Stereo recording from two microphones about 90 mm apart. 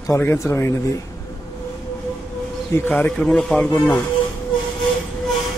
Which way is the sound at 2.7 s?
30° left (ahead or behind).